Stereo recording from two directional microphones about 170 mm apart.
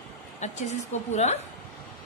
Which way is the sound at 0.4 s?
40° left (ahead or behind).